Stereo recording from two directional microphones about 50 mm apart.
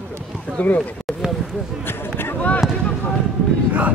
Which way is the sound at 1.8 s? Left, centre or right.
Left.